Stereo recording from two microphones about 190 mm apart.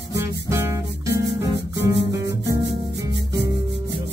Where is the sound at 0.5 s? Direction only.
15° right (ahead or behind).